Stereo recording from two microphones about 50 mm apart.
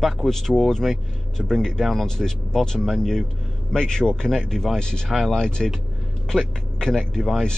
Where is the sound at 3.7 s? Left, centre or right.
Centre.